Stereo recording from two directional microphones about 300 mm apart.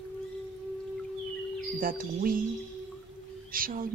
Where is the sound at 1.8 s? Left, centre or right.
Right.